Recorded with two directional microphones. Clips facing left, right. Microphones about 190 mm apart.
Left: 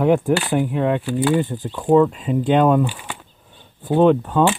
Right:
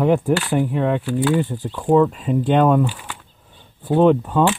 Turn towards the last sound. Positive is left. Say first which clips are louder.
# even
turn(degrees=0)  # may be behind; listen again after turning